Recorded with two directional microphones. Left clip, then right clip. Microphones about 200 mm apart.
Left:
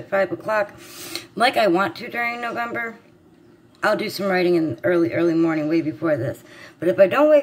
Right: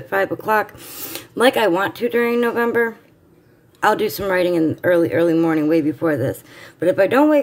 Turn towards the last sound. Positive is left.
turn(degrees=-50)  # may be behind; listen again after turning